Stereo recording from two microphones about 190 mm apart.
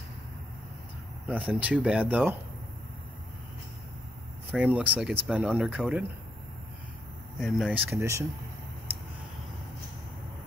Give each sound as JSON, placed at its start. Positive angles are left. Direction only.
{"t": 1.2, "sound": "speech", "side_deg": -5}
{"t": 4.5, "sound": "speech", "side_deg": -10}
{"t": 7.3, "sound": "speech", "side_deg": 0}
{"t": 7.9, "sound": "speech", "side_deg": -15}